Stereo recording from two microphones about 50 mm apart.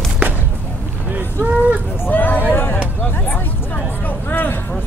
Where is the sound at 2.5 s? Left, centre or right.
Left.